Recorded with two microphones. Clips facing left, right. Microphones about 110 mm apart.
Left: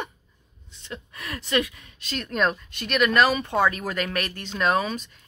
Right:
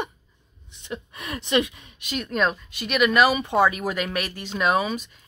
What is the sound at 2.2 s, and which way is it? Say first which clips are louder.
Speech: even; centre (ahead or behind).